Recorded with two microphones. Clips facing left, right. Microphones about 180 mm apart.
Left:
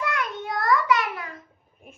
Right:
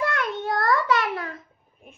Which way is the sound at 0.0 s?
60° right (ahead or behind).